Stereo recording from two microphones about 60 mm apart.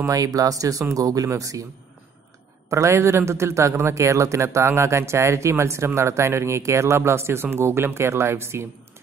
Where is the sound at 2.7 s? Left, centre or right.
Right.